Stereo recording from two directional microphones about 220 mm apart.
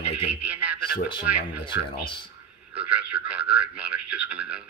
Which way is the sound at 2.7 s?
5° right (ahead or behind).